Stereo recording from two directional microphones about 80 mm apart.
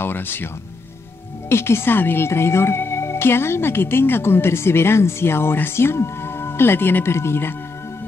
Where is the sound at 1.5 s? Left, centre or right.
Left.